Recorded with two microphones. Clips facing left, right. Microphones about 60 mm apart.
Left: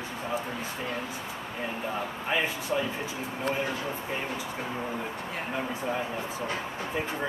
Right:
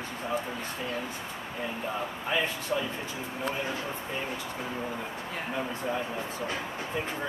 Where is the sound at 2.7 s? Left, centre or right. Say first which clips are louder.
Left 2 dB; centre.